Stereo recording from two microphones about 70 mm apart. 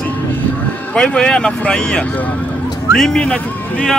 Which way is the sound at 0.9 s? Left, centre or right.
Centre.